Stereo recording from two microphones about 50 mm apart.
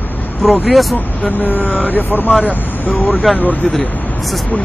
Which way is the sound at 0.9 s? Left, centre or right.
Left.